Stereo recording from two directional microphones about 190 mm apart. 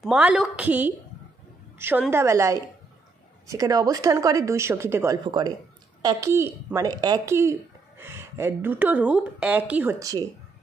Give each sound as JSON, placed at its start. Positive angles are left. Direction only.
{"t": 0.0, "sound": "a woman's voice", "side_deg": -5}